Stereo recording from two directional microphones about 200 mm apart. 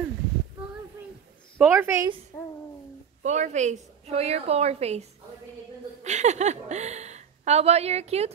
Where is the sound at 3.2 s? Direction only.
35° right (ahead or behind).